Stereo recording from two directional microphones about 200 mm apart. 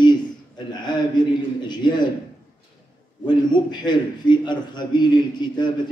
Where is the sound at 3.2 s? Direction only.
20° left (ahead or behind).